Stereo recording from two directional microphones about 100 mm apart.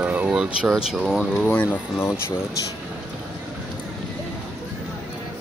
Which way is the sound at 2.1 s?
25° left (ahead or behind).